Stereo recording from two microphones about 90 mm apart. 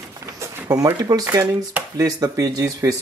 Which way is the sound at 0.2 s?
35° right (ahead or behind).